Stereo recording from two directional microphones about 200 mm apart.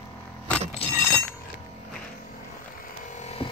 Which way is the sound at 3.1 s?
35° left (ahead or behind).